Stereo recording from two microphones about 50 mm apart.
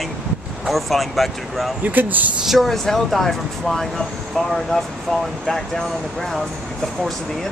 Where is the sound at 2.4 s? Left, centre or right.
Centre.